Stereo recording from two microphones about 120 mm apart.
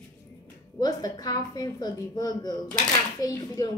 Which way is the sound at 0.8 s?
35° left (ahead or behind).